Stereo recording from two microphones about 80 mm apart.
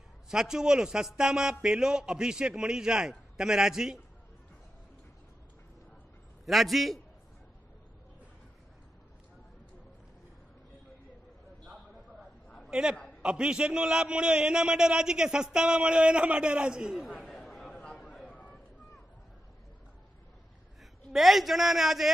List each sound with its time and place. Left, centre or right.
0.3 s a man's voice: centre
6.4 s a man's voice: centre
12.7 s a man's voice: centre
17.2 s chatter: centre
17.7 s a sound: centre
21.1 s a man's voice: centre